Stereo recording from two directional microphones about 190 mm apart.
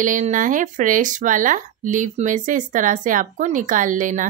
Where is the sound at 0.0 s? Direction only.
40° right (ahead or behind).